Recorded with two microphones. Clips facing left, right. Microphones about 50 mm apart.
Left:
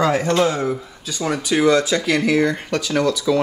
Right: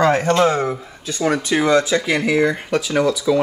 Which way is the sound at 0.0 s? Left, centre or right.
Right.